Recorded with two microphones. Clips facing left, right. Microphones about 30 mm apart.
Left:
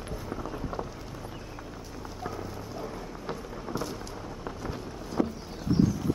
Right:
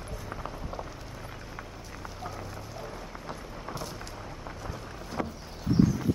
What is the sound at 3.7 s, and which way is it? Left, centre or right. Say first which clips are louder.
Rain: left 5 dB; centre.